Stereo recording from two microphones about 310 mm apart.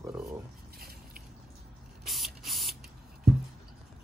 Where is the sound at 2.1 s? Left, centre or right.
Centre.